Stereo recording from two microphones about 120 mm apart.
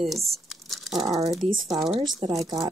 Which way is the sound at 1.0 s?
30° right (ahead or behind).